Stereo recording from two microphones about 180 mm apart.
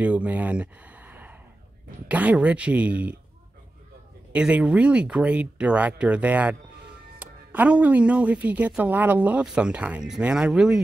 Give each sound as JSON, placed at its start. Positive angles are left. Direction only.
{"t": 0.0, "sound": "a sound", "side_deg": -5}
{"t": 2.0, "sound": "speech", "side_deg": -10}
{"t": 4.3, "sound": "speech", "side_deg": -5}